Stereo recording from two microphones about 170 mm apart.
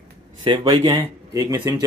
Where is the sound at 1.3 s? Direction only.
20° right (ahead or behind).